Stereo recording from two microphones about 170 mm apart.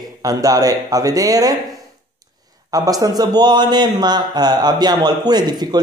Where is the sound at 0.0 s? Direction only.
20° right (ahead or behind).